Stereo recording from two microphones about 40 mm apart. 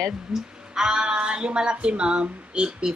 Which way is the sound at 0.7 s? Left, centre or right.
Centre.